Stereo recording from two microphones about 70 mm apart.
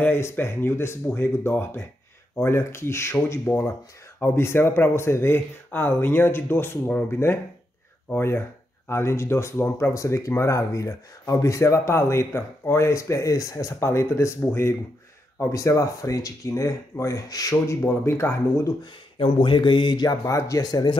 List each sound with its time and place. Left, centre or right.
0.0 s speech: left
15.5 s speech: left
17.8 s speech: left
19.6 s a sound: left
20.2 s speech: left
20.6 s speech: left